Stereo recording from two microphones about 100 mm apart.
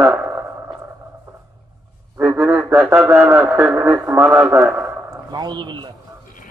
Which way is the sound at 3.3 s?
25° right (ahead or behind).